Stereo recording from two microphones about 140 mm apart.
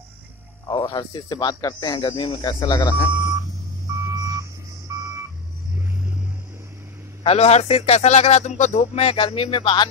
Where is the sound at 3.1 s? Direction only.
20° right (ahead or behind).